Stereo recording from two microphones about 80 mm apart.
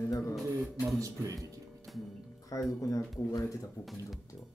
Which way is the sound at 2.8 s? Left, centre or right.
Left.